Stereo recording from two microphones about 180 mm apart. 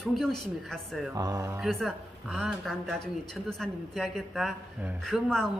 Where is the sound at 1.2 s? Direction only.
20° right (ahead or behind).